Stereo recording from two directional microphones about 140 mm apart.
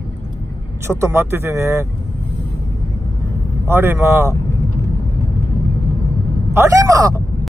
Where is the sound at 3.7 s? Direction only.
15° right (ahead or behind).